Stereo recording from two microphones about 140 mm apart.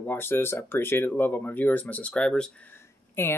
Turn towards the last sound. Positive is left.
turn(degrees=15)  # may be behind; listen again after turning